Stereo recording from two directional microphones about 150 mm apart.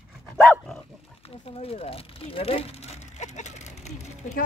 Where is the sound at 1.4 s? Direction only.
40° left (ahead or behind).